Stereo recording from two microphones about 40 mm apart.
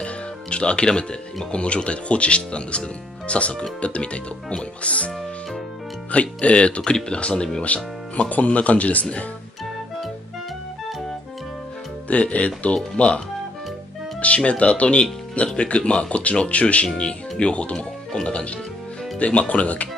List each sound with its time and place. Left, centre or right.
0.0 s speech: left
6.1 s speech: left
7.6 s speech: left
12.1 s speech: left
14.2 s speech: left